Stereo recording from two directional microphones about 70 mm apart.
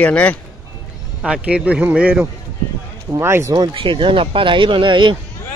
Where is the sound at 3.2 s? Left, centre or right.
Right.